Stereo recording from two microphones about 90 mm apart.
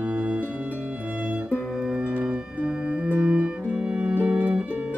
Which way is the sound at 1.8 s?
10° right (ahead or behind).